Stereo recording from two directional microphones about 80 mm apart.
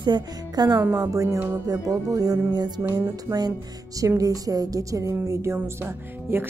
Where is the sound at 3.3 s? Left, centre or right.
Right.